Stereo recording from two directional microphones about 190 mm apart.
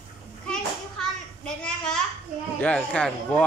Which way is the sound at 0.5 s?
5° left (ahead or behind).